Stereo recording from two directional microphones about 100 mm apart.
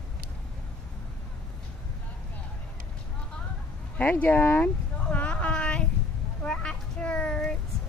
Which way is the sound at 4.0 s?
15° left (ahead or behind).